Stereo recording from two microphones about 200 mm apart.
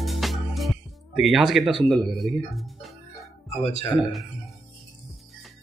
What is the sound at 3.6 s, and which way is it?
Speech, 35° left (ahead or behind).